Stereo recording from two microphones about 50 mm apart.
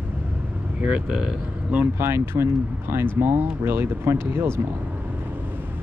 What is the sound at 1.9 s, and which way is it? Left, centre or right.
Speech, right.